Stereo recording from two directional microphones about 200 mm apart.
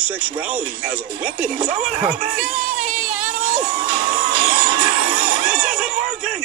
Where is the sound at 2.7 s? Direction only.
40° right (ahead or behind).